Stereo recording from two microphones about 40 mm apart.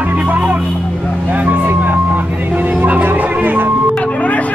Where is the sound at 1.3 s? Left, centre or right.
Right.